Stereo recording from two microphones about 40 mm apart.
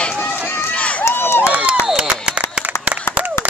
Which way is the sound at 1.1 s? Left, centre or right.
Left.